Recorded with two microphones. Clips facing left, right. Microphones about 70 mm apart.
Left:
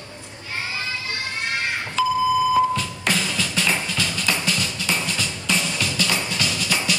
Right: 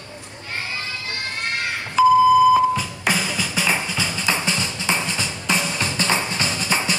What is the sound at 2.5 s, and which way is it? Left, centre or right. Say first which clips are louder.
Music: right 2 dB; centre.